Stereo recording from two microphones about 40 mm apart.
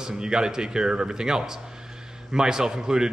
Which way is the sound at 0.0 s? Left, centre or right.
Centre.